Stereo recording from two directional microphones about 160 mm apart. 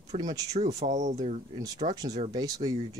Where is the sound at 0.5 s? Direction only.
45° right (ahead or behind).